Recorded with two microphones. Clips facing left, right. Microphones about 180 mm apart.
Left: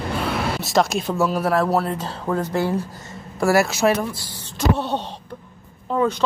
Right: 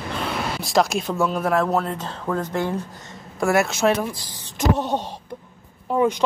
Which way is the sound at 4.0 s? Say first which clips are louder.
Even; 15° right (ahead or behind).